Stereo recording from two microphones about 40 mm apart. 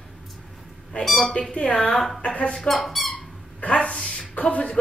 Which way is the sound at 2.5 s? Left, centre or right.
Centre.